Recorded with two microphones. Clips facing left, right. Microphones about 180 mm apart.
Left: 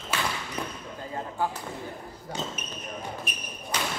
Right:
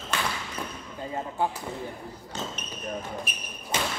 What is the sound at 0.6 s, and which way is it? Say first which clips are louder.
Basketball bounce: left 3 dB; 20° left (ahead or behind).